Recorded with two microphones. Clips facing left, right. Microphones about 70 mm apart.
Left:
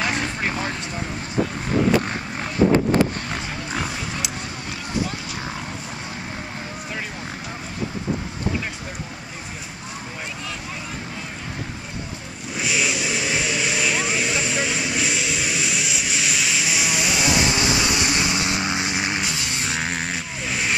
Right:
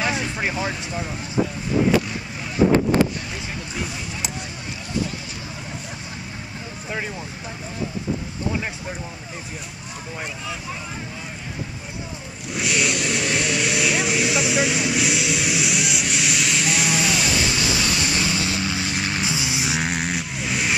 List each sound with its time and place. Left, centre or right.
0.0 s vehicle: centre
12.5 s vehicle: centre
17.5 s vehicle: left
19.2 s vehicle: centre